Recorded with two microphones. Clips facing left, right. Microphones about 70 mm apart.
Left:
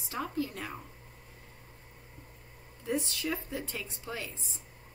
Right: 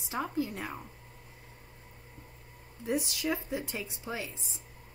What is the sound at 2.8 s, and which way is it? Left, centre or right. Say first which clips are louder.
Speech: right 1 dB; centre.